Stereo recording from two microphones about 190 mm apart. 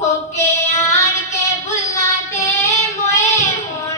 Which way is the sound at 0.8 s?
15° left (ahead or behind).